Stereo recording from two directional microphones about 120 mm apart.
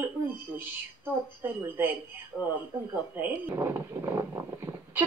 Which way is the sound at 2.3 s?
Centre (ahead or behind).